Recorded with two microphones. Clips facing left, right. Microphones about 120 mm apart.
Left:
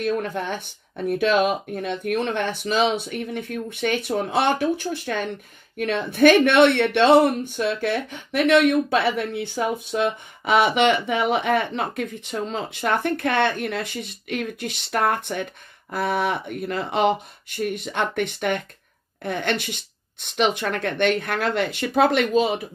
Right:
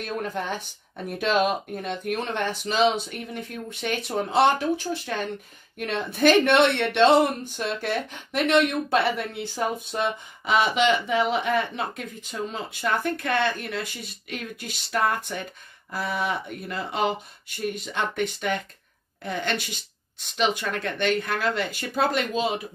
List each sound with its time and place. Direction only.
0.0 s speech: 55° left (ahead or behind)